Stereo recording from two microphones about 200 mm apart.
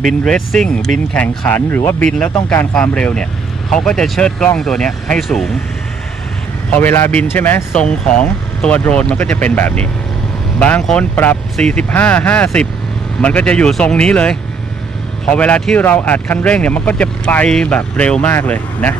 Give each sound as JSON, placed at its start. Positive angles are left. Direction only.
{"t": 0.0, "sound": "speech", "side_deg": 0}
{"t": 6.8, "sound": "speech", "side_deg": 10}